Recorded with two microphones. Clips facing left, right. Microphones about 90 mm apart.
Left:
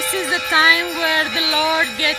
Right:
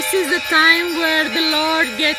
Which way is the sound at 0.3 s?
25° right (ahead or behind).